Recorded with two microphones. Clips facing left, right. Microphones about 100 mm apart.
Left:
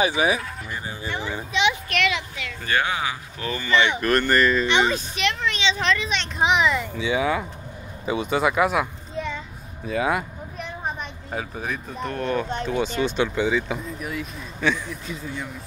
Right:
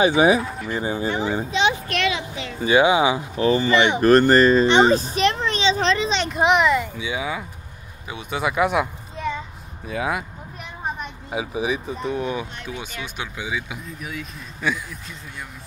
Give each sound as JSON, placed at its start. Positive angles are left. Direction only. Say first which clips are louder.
{"t": 0.2, "sound": "a child's voice", "louder": "right 6 dB", "side_deg": -25}
{"t": 2.6, "sound": "speech", "louder": "right 8 dB", "side_deg": -15}
{"t": 3.3, "sound": "a child's voice", "louder": "right 4 dB", "side_deg": -30}
{"t": 6.2, "sound": "a child's voice", "louder": "right 2 dB", "side_deg": -5}
{"t": 9.8, "sound": "vehicle", "louder": "left 2 dB", "side_deg": 0}
{"t": 11.3, "sound": "speech", "louder": "right 5 dB", "side_deg": -10}